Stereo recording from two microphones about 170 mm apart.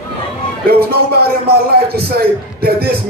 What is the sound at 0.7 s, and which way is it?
Speech, 65° right (ahead or behind).